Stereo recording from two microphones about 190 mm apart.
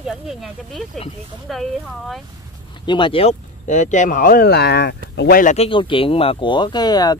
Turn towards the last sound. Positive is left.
turn(degrees=20)  # may be behind; listen again after turning